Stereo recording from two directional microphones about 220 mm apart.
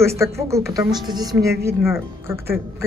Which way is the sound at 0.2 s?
15° right (ahead or behind).